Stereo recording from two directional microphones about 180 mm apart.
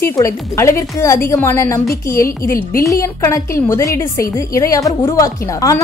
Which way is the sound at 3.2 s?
15° left (ahead or behind).